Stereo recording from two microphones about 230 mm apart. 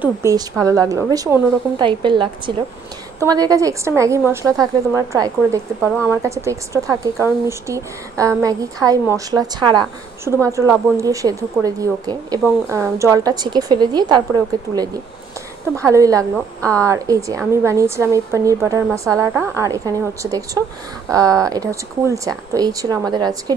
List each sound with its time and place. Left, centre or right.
0.0 s speech: centre
15.9 s speech: centre